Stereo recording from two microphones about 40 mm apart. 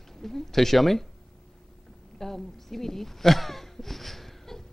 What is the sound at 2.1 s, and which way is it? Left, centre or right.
Speech, centre.